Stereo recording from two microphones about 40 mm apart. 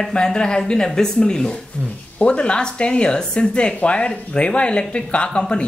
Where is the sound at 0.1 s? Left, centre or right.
Left.